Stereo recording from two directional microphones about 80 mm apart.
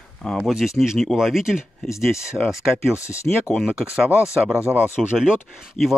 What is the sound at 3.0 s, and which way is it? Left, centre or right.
Speech, left.